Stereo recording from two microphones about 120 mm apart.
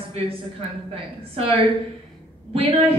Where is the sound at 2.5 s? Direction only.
55° right (ahead or behind).